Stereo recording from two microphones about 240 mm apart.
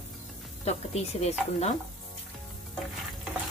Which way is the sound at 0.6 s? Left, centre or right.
Left.